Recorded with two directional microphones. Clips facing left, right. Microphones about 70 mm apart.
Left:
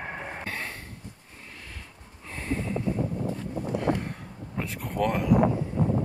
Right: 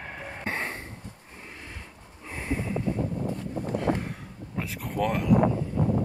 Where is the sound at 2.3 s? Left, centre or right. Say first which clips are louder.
Even; centre.